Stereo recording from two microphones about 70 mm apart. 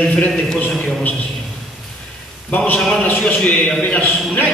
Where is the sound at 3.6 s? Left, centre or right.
Centre.